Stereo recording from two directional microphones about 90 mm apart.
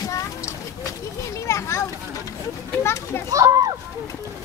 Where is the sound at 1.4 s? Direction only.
30° left (ahead or behind).